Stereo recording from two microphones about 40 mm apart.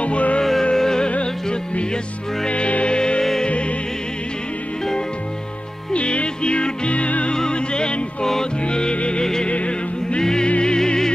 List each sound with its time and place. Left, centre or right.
0.0 s music: left
0.4 s music: centre
5.9 s music: left
7.3 s music: left
9.2 s music: centre
9.5 s music: left